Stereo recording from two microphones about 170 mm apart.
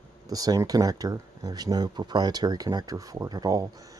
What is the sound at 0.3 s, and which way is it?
Speech, 20° right (ahead or behind).